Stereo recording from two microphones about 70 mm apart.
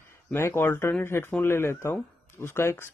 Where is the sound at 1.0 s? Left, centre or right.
Left.